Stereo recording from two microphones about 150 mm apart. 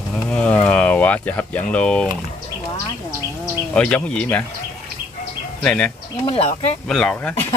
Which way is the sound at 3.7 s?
5° left (ahead or behind).